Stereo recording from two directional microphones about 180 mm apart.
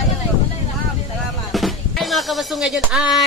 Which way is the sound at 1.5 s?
Centre (ahead or behind).